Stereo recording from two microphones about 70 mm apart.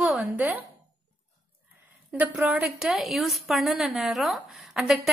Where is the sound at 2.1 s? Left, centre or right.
Right.